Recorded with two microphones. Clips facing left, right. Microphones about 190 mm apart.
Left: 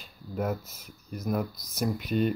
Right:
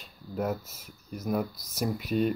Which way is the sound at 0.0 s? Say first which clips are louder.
Even; centre (ahead or behind).